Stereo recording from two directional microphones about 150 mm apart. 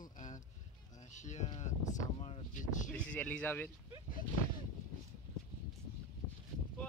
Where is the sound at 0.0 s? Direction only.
55° left (ahead or behind).